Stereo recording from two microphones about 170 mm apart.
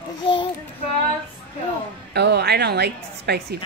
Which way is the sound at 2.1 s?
80° right.